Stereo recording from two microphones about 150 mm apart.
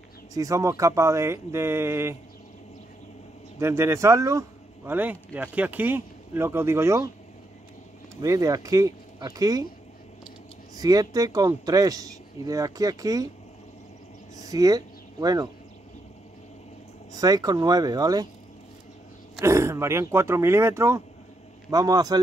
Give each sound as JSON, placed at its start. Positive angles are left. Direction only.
{"t": 0.3, "sound": "speech", "side_deg": -20}
{"t": 3.5, "sound": "speech", "side_deg": -20}
{"t": 8.2, "sound": "speech", "side_deg": -25}
{"t": 10.8, "sound": "speech", "side_deg": -25}
{"t": 14.3, "sound": "speech", "side_deg": -25}
{"t": 17.1, "sound": "speech", "side_deg": -25}
{"t": 19.4, "sound": "speech", "side_deg": -20}